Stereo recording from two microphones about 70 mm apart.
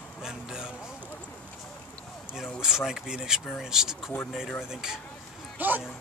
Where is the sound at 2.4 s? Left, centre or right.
Centre.